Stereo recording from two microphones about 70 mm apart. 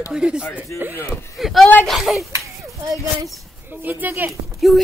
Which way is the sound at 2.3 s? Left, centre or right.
Right.